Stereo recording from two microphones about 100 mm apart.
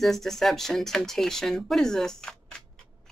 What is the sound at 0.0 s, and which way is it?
Speech, 5° left (ahead or behind).